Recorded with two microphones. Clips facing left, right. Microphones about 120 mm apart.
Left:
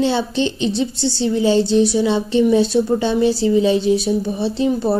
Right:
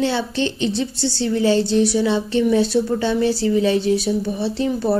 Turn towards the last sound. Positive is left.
turn(degrees=20)  # may be behind; listen again after turning